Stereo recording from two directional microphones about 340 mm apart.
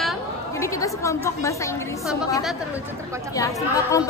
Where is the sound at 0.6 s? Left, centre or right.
Centre.